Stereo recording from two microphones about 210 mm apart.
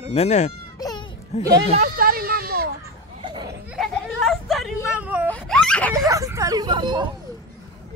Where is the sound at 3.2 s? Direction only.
20° right (ahead or behind).